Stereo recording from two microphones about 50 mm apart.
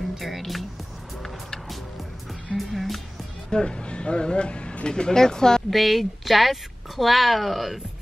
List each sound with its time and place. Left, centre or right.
0.1 s speech: centre
1.2 s music: centre
3.4 s speech: centre
5.7 s a woman's voice: centre